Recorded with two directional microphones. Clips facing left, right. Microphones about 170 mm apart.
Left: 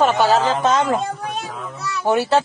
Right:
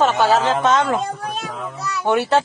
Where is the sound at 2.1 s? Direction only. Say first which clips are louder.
Even; 5° left (ahead or behind).